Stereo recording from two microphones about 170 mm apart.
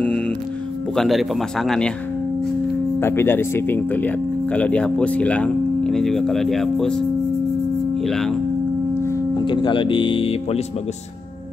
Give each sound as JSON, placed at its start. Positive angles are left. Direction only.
{"t": 0.9, "sound": "speech", "side_deg": 0}
{"t": 3.0, "sound": "speech", "side_deg": 15}
{"t": 9.4, "sound": "speech", "side_deg": 30}